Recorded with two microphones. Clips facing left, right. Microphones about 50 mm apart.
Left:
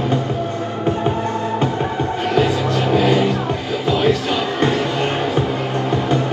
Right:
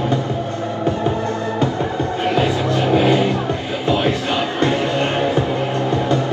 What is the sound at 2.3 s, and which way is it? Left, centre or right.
Music, right.